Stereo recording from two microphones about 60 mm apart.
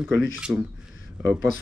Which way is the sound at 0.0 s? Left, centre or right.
Centre.